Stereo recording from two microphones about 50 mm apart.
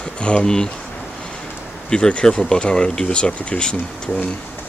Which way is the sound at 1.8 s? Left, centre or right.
Centre.